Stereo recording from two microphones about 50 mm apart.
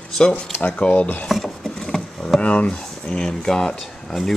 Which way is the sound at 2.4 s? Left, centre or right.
Left.